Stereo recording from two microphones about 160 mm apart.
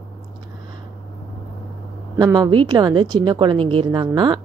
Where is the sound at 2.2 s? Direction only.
25° right (ahead or behind).